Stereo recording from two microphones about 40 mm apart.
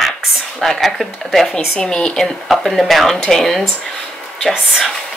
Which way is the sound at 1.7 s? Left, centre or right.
Left.